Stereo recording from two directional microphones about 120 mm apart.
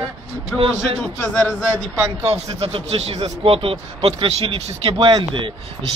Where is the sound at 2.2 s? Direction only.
60° right (ahead or behind); by 5.5 s 45° right (ahead or behind).